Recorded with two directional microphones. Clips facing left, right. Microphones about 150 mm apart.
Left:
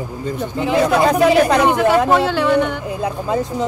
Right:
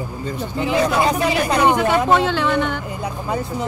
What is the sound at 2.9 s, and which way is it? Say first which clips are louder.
Speech: left 4 dB; 90° left.